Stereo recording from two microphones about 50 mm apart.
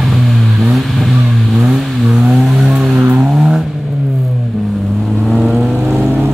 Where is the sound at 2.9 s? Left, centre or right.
Right.